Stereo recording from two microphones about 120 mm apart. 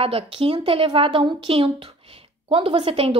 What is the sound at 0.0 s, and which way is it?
Speech, 55° right (ahead or behind).